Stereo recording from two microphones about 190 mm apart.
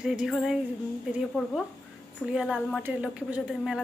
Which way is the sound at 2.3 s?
5° right (ahead or behind).